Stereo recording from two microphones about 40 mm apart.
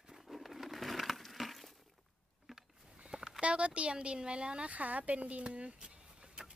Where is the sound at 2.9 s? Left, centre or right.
Right.